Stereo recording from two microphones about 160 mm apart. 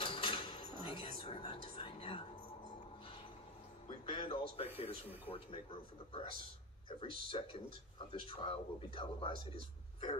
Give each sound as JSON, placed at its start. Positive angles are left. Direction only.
{"t": 0.0, "sound": "cutlery", "side_deg": 35}
{"t": 4.0, "sound": "a sound", "side_deg": 35}
{"t": 6.9, "sound": "speech", "side_deg": 35}